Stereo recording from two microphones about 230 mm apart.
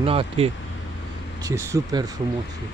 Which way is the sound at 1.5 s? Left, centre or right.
Centre.